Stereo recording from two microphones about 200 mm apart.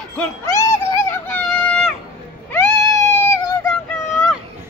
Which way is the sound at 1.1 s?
10° left (ahead or behind).